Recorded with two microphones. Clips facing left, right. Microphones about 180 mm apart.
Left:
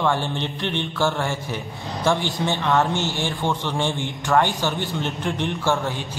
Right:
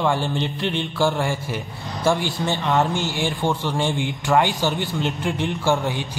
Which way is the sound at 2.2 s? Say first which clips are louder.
Even; 20° left (ahead or behind).